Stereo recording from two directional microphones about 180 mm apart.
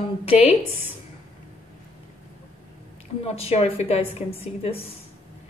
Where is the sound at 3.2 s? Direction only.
35° left (ahead or behind).